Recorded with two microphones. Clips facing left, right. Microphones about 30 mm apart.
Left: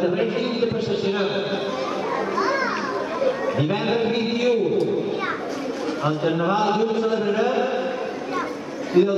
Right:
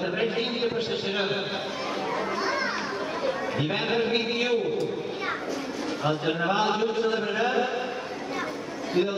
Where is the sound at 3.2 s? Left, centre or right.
Centre.